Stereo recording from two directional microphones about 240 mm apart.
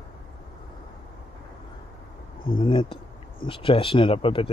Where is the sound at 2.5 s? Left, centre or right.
Left.